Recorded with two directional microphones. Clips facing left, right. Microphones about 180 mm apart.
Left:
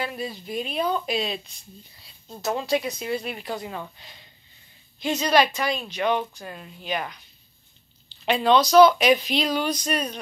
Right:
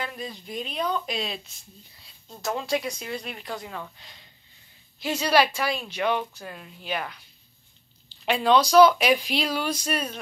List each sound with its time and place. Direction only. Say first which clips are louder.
0.0 s speech: left 4 dB; 10° left (ahead or behind)
5.0 s speech: left 1 dB; 10° right (ahead or behind)
6.0 s speech: left 2 dB; 15° left (ahead or behind)
6.4 s speech: left 2 dB; centre (ahead or behind)
6.9 s speech: left 2 dB; 15° left (ahead or behind)
8.1 s speech: left 1 dB; 5° right (ahead or behind)